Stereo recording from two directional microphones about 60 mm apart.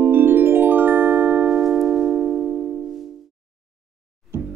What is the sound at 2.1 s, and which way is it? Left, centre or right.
Music, centre.